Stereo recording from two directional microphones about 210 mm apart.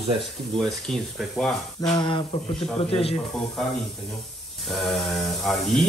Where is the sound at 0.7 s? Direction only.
Centre (ahead or behind).